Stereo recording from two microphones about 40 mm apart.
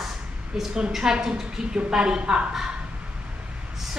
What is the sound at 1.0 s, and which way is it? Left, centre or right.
A woman's voice, centre.